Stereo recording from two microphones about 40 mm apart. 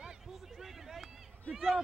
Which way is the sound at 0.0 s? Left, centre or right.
Centre.